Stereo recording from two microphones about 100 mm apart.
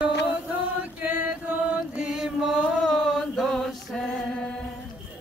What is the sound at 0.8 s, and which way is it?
Chant, 15° right (ahead or behind).